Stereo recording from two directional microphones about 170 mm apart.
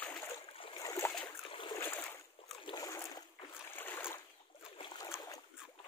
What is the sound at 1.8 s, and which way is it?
Boat, 15° left (ahead or behind).